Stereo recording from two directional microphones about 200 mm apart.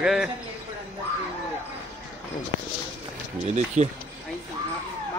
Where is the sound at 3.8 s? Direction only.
35° right (ahead or behind).